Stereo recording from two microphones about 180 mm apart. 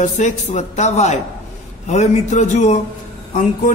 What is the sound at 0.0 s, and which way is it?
A man's voice, 40° left (ahead or behind).